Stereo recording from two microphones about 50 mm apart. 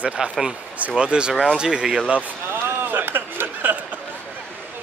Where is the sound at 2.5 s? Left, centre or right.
Right.